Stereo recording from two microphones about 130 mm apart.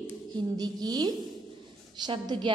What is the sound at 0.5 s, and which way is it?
A woman's voice, 30° right (ahead or behind).